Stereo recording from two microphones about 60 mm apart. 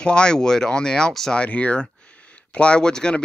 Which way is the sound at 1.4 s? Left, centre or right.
Left.